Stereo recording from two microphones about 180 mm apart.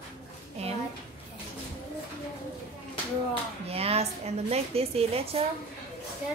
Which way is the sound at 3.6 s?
35° right (ahead or behind).